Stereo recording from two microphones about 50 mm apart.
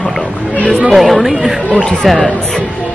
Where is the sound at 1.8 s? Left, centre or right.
Centre.